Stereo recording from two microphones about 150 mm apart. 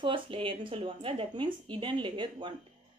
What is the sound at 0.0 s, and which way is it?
A woman's voice, 35° right (ahead or behind).